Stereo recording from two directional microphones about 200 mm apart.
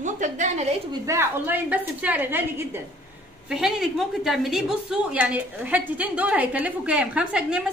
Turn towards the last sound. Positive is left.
turn(degrees=-5)  # may be behind; listen again after turning